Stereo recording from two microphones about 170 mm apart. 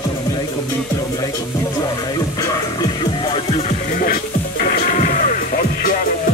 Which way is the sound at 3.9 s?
50° left (ahead or behind).